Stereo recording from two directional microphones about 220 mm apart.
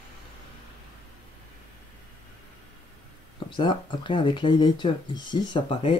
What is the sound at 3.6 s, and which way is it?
Speech, 20° left (ahead or behind).